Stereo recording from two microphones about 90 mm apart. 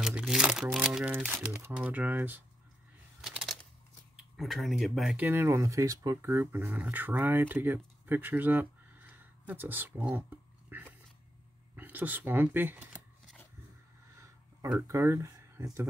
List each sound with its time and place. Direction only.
0.2 s speech: 5° right (ahead or behind)
3.2 s a sound: 5° right (ahead or behind)
4.2 s speech: centre (ahead or behind)
5.1 s speech: 20° right (ahead or behind)
10.7 s dog: 20° right (ahead or behind)
11.7 s speech: 20° right (ahead or behind)
14.9 s speech: 35° right (ahead or behind)